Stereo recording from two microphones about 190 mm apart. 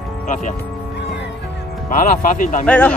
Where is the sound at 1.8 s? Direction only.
45° left (ahead or behind).